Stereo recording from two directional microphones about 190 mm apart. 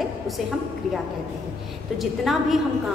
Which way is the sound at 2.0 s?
Centre (ahead or behind).